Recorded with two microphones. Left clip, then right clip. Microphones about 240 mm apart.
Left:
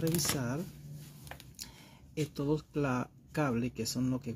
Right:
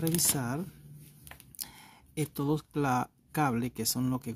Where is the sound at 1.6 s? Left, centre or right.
Right.